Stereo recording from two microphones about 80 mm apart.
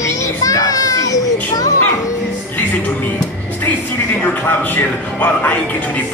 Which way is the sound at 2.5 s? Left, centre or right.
Left.